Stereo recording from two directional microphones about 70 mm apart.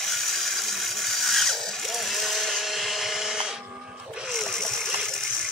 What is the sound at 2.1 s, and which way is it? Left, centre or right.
Tools, centre.